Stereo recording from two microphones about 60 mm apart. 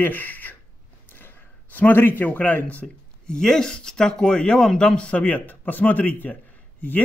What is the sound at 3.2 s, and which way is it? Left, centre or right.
Speech, centre.